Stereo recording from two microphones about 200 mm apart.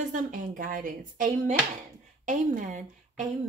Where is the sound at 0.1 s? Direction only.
40° right (ahead or behind).